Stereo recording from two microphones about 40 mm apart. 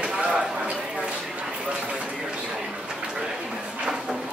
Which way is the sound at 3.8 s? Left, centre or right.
Centre.